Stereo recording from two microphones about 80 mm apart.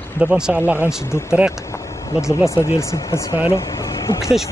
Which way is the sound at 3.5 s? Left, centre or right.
Left.